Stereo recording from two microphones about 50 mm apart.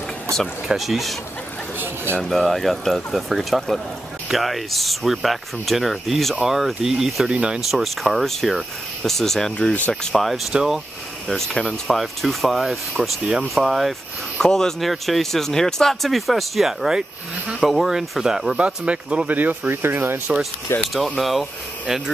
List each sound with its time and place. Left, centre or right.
0.7 s speech: centre
2.2 s speech: centre
7.2 s speech: centre
7.7 s speech: centre
10.5 s speech: centre
11.2 s speech: centre
14.4 s speech: centre
18.6 s speech: right
19.2 s speech: right
19.8 s speech: right
20.7 s speech: left
21.2 s speech: centre